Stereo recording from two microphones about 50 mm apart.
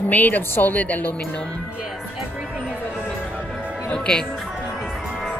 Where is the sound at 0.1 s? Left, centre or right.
Left.